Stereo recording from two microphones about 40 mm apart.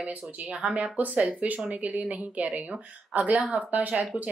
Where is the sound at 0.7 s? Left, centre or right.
Right.